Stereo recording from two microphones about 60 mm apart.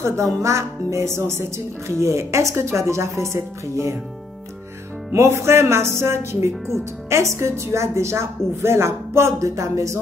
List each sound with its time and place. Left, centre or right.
0.4 s a woman's voice: right
5.1 s a woman's voice: right